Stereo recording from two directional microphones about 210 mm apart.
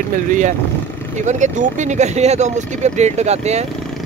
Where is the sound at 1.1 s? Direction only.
35° right (ahead or behind).